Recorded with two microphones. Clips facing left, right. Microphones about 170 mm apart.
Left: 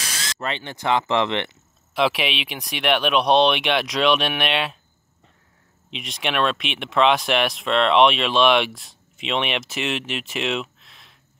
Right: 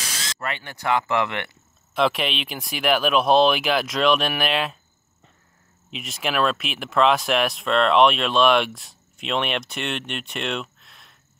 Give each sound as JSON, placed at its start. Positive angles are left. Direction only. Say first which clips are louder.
{"t": 0.4, "sound": "speech", "louder": "left 3 dB", "side_deg": 20}
{"t": 2.0, "sound": "speech", "louder": "even", "side_deg": 0}
{"t": 5.9, "sound": "speech", "louder": "even", "side_deg": 0}